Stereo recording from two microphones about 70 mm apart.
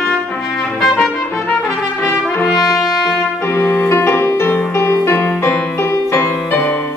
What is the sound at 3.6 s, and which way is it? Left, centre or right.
Music, left.